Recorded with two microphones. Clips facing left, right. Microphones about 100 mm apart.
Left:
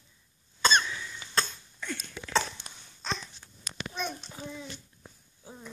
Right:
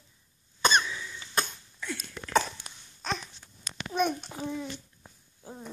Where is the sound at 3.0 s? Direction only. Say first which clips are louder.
Right 2 dB; 10° right (ahead or behind).